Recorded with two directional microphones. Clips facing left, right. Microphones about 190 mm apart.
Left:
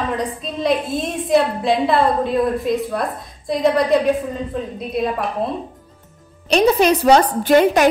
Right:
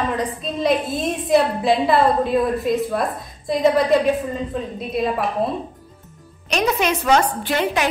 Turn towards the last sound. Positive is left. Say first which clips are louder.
# left 8 dB
turn(degrees=45)  # may be behind; listen again after turning